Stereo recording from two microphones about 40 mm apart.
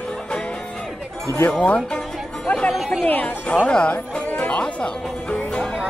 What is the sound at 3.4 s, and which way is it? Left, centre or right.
Speech, left.